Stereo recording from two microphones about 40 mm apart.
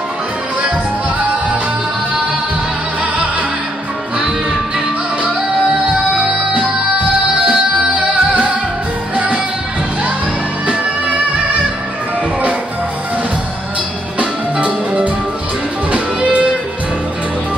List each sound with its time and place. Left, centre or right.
7.4 s music: right
14.6 s music: right